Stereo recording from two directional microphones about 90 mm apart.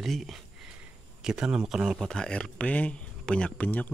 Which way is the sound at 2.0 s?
5° left (ahead or behind).